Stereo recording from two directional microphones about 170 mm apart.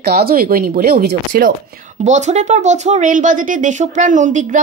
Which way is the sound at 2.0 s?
45° right (ahead or behind).